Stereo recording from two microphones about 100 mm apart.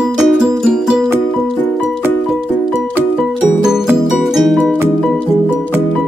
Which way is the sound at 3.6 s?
5° right (ahead or behind).